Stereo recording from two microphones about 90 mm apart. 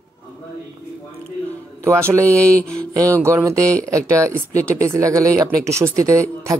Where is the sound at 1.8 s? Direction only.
35° right (ahead or behind).